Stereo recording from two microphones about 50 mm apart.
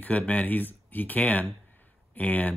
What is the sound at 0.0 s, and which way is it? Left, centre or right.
Speech, left.